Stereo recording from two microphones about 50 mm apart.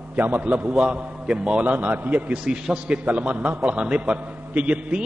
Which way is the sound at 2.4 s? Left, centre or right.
Centre.